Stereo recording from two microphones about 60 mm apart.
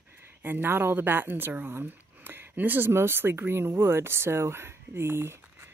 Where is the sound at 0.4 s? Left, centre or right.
Right.